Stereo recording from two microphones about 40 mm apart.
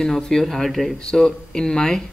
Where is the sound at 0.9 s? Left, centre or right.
Centre.